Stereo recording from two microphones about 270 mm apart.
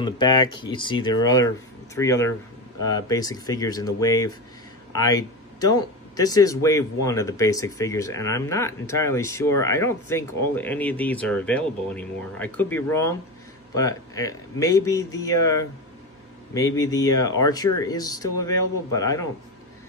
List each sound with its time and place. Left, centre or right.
0.0 s speech: centre